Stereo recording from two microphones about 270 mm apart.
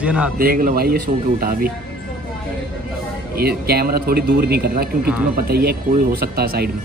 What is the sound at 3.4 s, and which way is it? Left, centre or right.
Speech, right.